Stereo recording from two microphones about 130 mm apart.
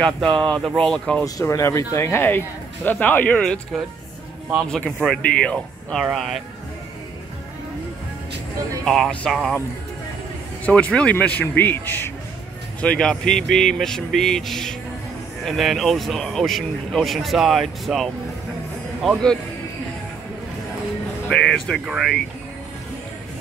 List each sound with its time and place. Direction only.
0.3 s speech: 35° right (ahead or behind)
0.6 s speech: centre (ahead or behind)
1.2 s speech: 25° left (ahead or behind); by 3.6 s 10° left (ahead or behind)
4.6 s speech: 5° left (ahead or behind)
8.8 s speech: 5° left (ahead or behind)
10.6 s speech: 10° left (ahead or behind)
21.3 s speech: 5° left (ahead or behind)